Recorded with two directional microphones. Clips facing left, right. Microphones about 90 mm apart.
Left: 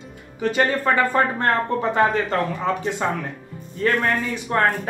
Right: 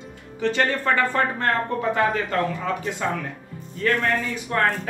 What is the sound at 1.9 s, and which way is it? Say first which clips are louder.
Speech: left 3 dB; 30° left (ahead or behind).